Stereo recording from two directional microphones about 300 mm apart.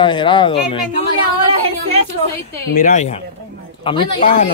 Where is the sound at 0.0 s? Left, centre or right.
Centre.